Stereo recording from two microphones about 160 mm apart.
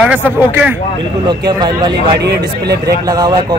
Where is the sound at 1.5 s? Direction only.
25° right (ahead or behind).